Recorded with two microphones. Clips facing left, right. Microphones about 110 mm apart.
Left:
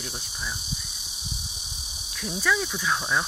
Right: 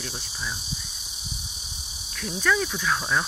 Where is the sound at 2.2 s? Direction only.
10° left (ahead or behind).